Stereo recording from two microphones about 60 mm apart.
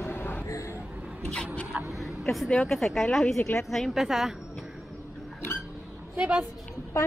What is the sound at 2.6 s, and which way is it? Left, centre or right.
A woman's voice, centre.